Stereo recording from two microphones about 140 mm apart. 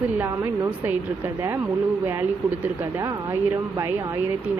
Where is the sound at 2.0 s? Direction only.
15° right (ahead or behind).